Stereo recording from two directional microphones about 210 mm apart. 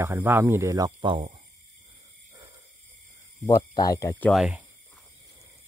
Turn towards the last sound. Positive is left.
turn(degrees=0)  # may be behind; listen again after turning